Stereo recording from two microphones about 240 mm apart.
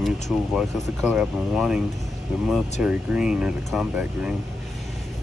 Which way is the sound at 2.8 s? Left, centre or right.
Centre.